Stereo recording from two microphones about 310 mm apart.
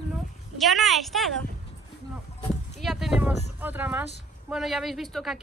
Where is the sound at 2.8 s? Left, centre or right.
Centre.